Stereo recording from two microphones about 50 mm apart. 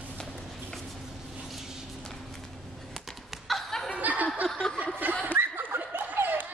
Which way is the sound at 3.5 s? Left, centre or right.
Centre.